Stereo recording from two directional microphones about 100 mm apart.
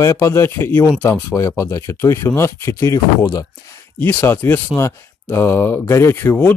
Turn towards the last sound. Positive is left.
turn(degrees=20)  # may be behind; listen again after turning